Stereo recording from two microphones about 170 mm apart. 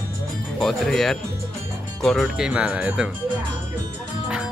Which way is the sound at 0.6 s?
Centre (ahead or behind).